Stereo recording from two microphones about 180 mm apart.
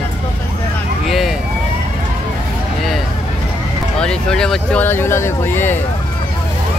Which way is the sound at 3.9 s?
5° left (ahead or behind).